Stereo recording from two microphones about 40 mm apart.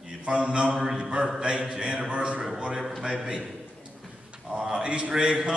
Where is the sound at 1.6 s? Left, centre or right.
Centre.